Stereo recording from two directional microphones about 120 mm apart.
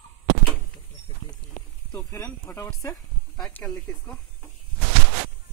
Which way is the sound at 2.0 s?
20° left (ahead or behind).